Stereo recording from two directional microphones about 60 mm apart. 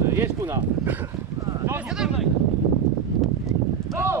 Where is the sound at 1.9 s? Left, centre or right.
Centre.